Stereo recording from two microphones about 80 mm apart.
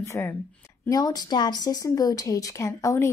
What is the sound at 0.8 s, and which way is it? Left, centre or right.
A woman's voice, left.